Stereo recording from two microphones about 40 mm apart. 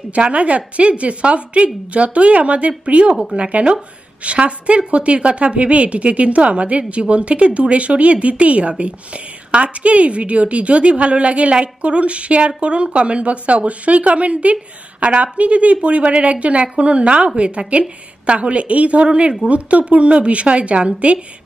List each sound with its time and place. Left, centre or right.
0.1 s a woman's voice: right